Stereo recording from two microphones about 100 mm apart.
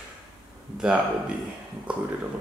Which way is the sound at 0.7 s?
10° right (ahead or behind).